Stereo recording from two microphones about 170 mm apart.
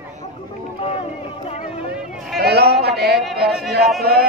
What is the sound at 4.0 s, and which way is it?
Speech, 65° right (ahead or behind).